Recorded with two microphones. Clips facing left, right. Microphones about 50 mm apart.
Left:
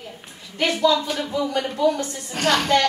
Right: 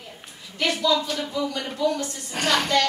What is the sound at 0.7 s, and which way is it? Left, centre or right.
Speech, centre.